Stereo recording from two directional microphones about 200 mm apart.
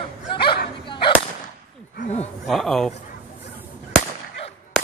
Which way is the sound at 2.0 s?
35° left (ahead or behind).